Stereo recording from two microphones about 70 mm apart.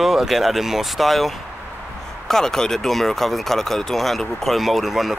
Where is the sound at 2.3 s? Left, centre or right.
Centre.